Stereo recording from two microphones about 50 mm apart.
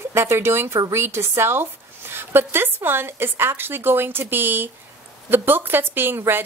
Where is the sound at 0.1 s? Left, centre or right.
Right.